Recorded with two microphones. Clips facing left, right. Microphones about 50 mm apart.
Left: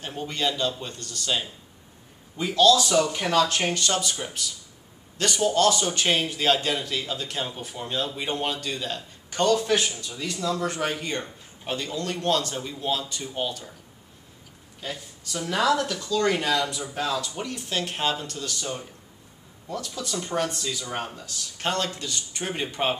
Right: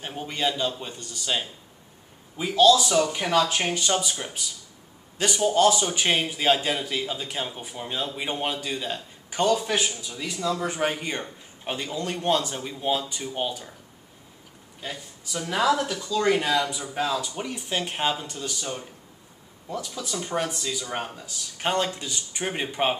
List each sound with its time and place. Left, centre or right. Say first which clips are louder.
0.0 s a man's voice: even; centre
14.8 s a man's voice: left 1 dB; centre